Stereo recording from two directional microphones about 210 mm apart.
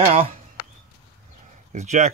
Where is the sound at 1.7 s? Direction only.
35° right (ahead or behind).